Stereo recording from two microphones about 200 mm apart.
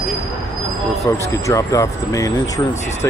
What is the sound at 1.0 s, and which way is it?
Speech, 15° left (ahead or behind).